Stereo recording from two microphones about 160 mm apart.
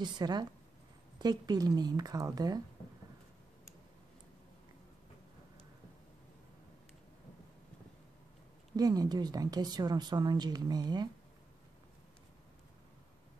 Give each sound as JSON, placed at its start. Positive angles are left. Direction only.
{"t": 0.0, "sound": "speech", "side_deg": -25}
{"t": 8.7, "sound": "speech", "side_deg": -25}